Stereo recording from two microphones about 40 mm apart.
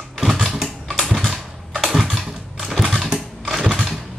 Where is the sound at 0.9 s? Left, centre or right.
Centre.